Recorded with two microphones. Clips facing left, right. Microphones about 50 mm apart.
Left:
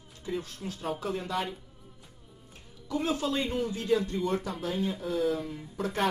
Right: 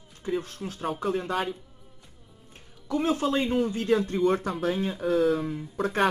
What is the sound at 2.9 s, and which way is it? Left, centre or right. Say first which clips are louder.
Speech: right 4 dB; right.